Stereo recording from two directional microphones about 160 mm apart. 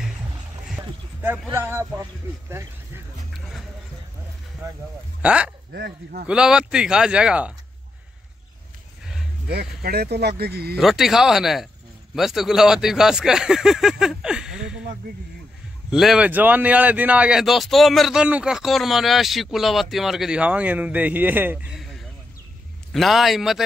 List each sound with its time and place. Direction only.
1.5 s speech: 15° right (ahead or behind)
5.2 s speech: 5° right (ahead or behind)
5.7 s speech: 85° right
6.2 s speech: 5° right (ahead or behind)
9.5 s speech: 85° right
10.8 s speech: centre (ahead or behind)
15.9 s speech: 5° right (ahead or behind)